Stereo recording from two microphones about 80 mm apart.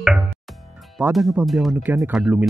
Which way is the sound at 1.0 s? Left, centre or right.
Centre.